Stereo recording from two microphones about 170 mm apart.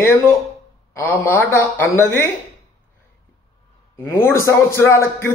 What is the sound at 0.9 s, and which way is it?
A man's voice, 10° left (ahead or behind).